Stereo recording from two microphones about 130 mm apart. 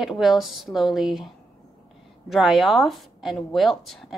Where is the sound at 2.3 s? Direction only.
Centre (ahead or behind).